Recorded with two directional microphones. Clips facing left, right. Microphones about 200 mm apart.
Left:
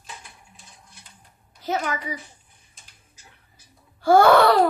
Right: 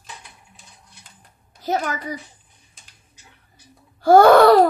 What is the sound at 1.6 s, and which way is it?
Speech, 40° right (ahead or behind).